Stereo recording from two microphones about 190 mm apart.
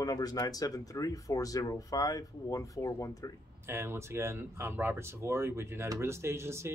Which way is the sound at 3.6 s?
15° right (ahead or behind).